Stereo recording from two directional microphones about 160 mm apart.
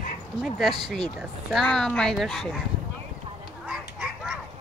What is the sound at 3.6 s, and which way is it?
Fowl, 5° right (ahead or behind).